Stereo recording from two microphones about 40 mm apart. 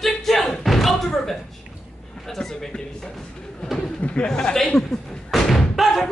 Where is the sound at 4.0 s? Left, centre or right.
Left.